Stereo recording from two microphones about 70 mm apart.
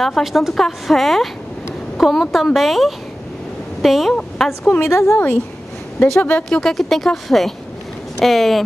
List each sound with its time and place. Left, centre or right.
0.0 s speech: centre
4.8 s a woman's voice: left
6.1 s speech: left
6.5 s speech: centre